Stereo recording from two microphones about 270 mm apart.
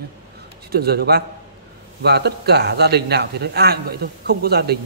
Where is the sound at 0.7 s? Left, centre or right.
Right.